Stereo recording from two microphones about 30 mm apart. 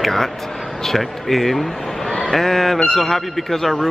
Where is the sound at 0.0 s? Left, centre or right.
Centre.